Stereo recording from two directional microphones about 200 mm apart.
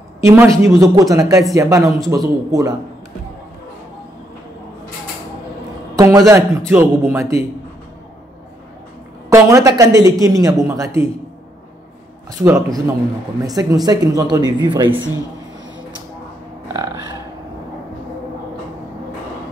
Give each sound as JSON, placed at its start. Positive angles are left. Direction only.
{"t": 0.2, "sound": "speech", "side_deg": -15}
{"t": 1.8, "sound": "speech", "side_deg": 0}
{"t": 2.0, "sound": "speech", "side_deg": -20}
{"t": 5.9, "sound": "speech", "side_deg": -15}
{"t": 9.3, "sound": "speech", "side_deg": -15}
{"t": 12.3, "sound": "speech", "side_deg": -15}